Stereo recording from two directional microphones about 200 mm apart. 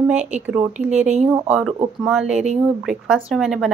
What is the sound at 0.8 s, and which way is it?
Speech, 35° right (ahead or behind).